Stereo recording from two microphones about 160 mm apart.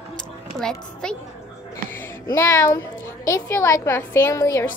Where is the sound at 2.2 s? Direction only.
25° left (ahead or behind).